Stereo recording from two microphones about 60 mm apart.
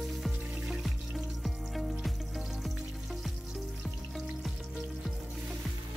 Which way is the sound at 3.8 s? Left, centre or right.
Centre.